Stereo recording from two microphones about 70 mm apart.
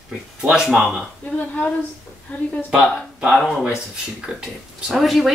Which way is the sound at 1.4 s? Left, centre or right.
Centre.